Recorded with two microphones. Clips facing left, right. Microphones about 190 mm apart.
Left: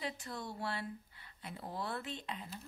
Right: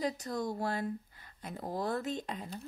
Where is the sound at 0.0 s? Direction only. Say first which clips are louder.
Right 8 dB; 40° right (ahead or behind).